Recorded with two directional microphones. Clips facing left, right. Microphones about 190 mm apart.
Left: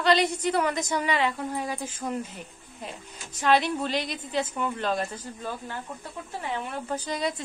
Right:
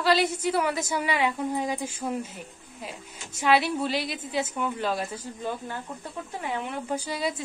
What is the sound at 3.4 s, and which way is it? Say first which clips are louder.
A woman's voice: even; 10° right (ahead or behind).